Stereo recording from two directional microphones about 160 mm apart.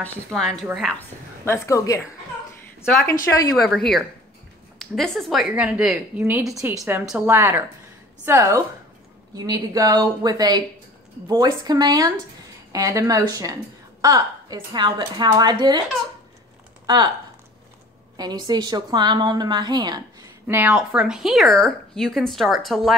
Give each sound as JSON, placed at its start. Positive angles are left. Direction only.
{"t": 0.0, "sound": "speech", "side_deg": 5}
{"t": 0.9, "sound": "a woman's voice", "side_deg": 15}
{"t": 3.1, "sound": "a woman's voice", "side_deg": 20}
{"t": 3.5, "sound": "a woman's voice", "side_deg": 0}
{"t": 16.8, "sound": "speech", "side_deg": -25}
{"t": 18.1, "sound": "a woman's voice", "side_deg": -25}
{"t": 20.4, "sound": "speech", "side_deg": -10}